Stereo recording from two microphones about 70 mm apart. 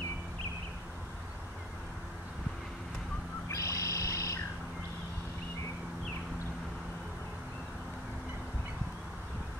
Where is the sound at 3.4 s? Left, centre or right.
Left.